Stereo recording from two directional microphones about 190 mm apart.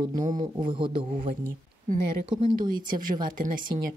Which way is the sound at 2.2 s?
25° right (ahead or behind).